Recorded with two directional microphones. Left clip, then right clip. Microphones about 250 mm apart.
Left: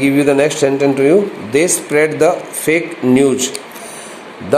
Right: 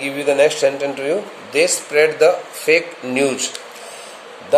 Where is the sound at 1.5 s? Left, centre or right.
Left.